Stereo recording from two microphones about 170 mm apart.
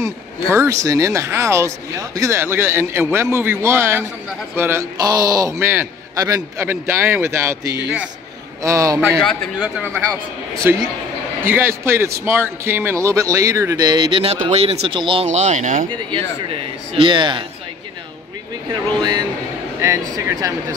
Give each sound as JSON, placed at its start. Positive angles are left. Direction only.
{"t": 0.0, "sound": "a man's voice", "side_deg": -15}
{"t": 9.2, "sound": "a man's voice", "side_deg": 5}
{"t": 10.6, "sound": "a man's voice", "side_deg": -10}
{"t": 15.2, "sound": "speech", "side_deg": -45}
{"t": 15.9, "sound": "a man's voice", "side_deg": -25}
{"t": 18.7, "sound": "a man's voice", "side_deg": -25}